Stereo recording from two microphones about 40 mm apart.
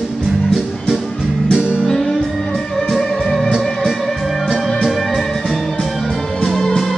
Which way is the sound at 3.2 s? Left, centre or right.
Centre.